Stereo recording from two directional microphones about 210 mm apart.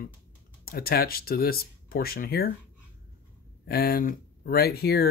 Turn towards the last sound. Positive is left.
turn(degrees=50)  # may be behind; listen again after turning